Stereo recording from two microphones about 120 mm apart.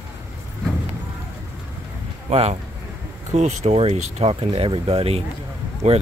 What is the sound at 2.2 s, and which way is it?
Speech, 60° right (ahead or behind).